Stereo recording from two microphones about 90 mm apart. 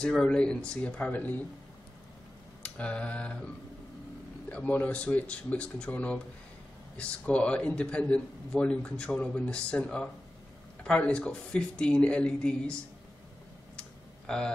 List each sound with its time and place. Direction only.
0.0 s a man's voice: 10° left (ahead or behind)
2.6 s a sound: 15° left (ahead or behind)
4.5 s a man's voice: 15° left (ahead or behind)
13.7 s computer keyboard: 10° left (ahead or behind)